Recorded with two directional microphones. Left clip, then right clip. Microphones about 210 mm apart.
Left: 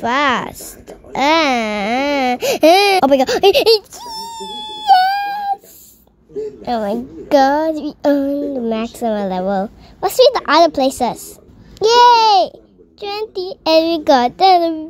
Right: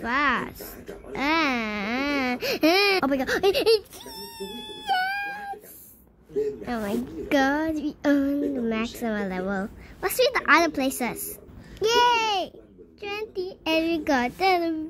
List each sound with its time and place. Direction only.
0.0 s a child's voice: 30° left (ahead or behind)
4.6 s wail: 25° left (ahead or behind)
6.6 s a woman's voice: 25° left (ahead or behind)